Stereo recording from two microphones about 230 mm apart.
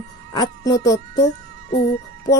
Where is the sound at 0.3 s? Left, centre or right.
Centre.